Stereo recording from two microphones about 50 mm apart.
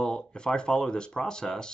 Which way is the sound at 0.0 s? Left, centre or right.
Centre.